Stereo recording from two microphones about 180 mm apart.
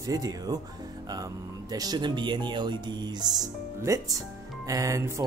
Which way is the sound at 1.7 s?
20° right (ahead or behind).